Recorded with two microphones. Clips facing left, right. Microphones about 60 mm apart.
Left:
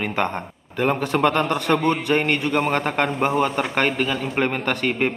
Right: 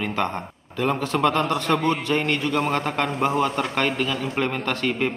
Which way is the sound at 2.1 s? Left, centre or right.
Left.